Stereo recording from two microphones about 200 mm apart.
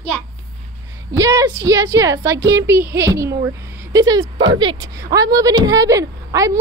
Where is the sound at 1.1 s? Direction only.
15° right (ahead or behind).